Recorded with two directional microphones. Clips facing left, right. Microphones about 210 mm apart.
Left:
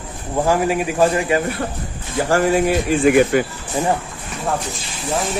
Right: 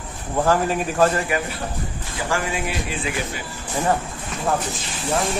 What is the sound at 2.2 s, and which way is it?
A man's voice, 40° left (ahead or behind).